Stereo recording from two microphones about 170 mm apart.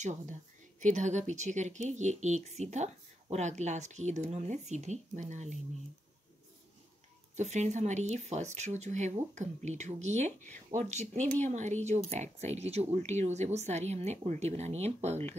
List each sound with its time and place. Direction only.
0.0 s a woman's voice: 45° right (ahead or behind)
7.3 s a woman's voice: 40° right (ahead or behind)